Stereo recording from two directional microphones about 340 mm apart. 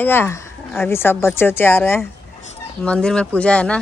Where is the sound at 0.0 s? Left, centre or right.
Centre.